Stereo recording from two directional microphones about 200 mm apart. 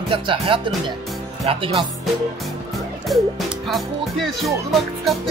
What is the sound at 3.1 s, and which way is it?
Speech, centre (ahead or behind).